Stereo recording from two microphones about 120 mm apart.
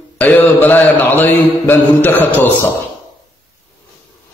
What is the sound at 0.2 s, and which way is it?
Mantra, 15° left (ahead or behind).